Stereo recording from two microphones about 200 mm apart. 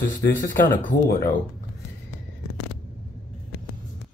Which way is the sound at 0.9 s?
40° left (ahead or behind).